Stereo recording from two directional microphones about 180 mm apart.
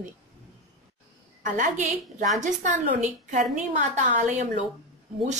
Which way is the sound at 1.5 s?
45° right (ahead or behind).